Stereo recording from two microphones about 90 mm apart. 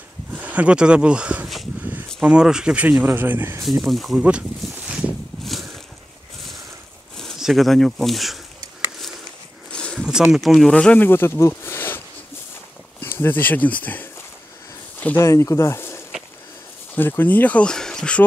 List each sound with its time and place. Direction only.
0.3 s speech: 15° right (ahead or behind)
1.8 s a sound: 20° right (ahead or behind)
2.2 s speech: 10° right (ahead or behind)
3.8 s speech: centre (ahead or behind)
4.2 s a sound: 10° right (ahead or behind)
5.4 s a sound: centre (ahead or behind)
7.2 s speech: centre (ahead or behind)
9.7 s a sound: 10° left (ahead or behind)
9.9 s insect: 5° right (ahead or behind)
10.3 s speech: centre (ahead or behind)
10.7 s speech: 10° left (ahead or behind)
11.1 s speech: 25° left (ahead or behind)
13.0 s speech: 25° left (ahead or behind)
15.2 s speech: 35° left (ahead or behind); by 18.2 s 10° left (ahead or behind)